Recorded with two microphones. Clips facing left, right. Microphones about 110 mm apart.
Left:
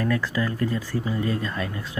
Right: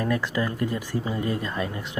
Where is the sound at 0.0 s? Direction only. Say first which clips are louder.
Left 1 dB; 20° right (ahead or behind).